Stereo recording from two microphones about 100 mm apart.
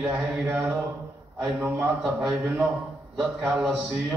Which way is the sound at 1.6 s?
25° right (ahead or behind).